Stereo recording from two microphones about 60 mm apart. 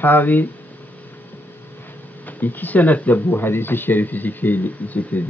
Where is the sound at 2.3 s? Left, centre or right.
Left.